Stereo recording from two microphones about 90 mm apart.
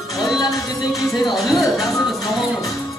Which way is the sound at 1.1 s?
50° left (ahead or behind).